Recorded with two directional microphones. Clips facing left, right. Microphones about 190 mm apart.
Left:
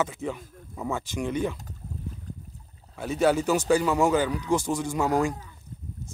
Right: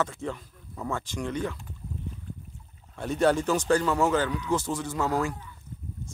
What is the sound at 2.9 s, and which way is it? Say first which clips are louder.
Speech: left 1 dB; 5° left (ahead or behind).